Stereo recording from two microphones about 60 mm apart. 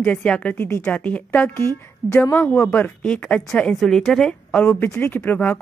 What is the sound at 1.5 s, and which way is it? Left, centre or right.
Speech, left.